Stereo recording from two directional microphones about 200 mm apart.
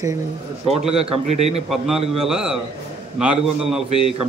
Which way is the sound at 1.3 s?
30° right (ahead or behind).